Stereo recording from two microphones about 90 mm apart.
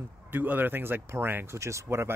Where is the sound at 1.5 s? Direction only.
35° right (ahead or behind).